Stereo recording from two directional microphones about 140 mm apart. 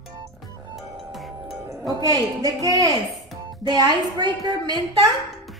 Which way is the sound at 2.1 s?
25° right (ahead or behind).